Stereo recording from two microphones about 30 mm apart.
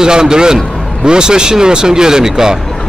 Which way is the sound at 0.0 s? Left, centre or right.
Right.